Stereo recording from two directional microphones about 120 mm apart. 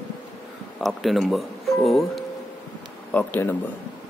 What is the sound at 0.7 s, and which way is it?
Speech, centre (ahead or behind).